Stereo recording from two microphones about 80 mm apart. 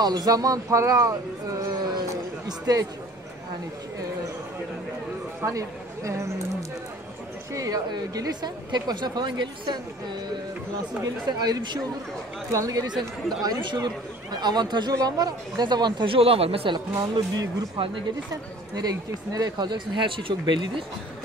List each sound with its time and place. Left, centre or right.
0.0 s speech: right
5.4 s speech: right
7.5 s a woman's voice: right
11.2 s a woman's voice: right
12.4 s speech: right
12.8 s a woman's voice: right
15.0 s a woman's voice: right
16.9 s speech: right
18.8 s speech: right